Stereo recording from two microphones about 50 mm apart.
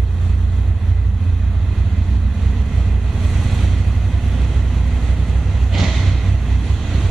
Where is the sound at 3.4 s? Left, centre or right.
Centre.